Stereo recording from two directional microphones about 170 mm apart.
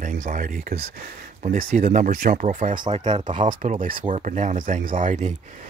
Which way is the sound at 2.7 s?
25° right (ahead or behind).